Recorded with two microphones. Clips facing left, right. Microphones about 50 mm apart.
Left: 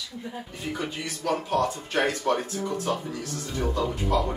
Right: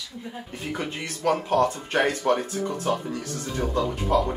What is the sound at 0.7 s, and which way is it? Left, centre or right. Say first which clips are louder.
Speech: right 1 dB; right.